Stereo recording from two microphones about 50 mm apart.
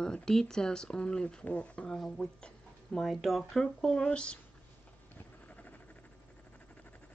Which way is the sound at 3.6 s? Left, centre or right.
Centre.